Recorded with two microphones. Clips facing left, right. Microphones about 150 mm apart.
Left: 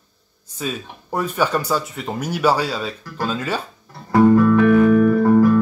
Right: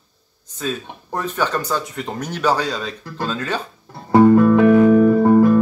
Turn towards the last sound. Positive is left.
turn(degrees=-25)  # may be behind; listen again after turning